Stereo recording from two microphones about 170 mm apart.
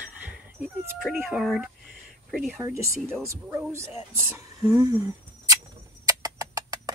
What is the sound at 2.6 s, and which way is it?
Speech, 15° right (ahead or behind).